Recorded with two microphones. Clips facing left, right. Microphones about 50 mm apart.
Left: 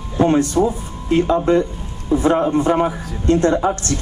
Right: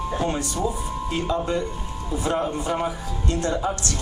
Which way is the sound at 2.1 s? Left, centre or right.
Left.